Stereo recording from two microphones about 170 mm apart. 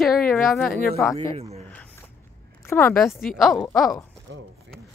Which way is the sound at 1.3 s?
35° right (ahead or behind).